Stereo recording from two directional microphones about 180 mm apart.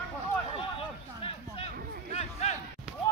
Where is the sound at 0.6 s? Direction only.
30° left (ahead or behind).